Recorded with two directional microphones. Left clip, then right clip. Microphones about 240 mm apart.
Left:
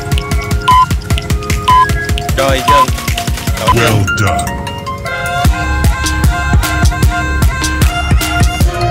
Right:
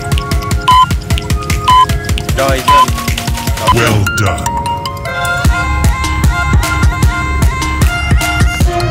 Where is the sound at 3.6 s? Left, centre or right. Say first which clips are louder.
Even; centre.